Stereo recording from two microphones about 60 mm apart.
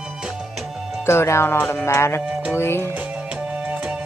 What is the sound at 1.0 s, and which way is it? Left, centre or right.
Speech, left.